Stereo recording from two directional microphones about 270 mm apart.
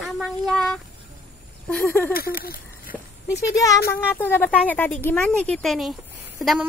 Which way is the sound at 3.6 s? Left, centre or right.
Centre.